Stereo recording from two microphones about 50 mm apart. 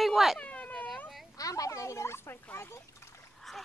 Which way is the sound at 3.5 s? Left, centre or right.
Centre.